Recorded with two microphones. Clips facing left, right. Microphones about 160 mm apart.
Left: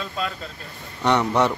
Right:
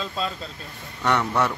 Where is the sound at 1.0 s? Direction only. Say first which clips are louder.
Left 3 dB; 20° left (ahead or behind).